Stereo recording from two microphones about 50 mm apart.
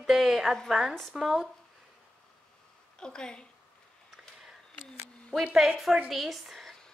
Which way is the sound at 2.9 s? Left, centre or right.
Centre.